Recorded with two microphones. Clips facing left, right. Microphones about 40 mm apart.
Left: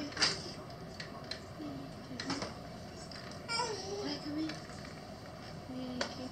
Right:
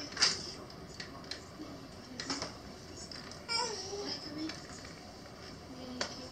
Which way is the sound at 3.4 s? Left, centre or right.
Centre.